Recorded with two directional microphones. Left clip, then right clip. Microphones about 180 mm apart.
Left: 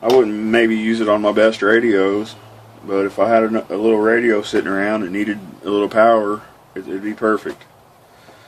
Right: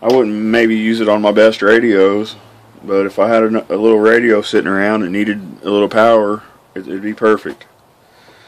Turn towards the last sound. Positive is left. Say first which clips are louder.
# right 5 dB
turn(degrees=-50)  # may be behind; listen again after turning